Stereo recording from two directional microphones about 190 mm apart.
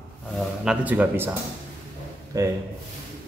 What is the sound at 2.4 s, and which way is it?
Speech, 15° right (ahead or behind).